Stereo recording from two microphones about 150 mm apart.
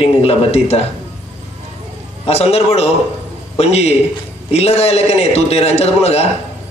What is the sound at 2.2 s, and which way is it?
A man's voice, 40° left (ahead or behind).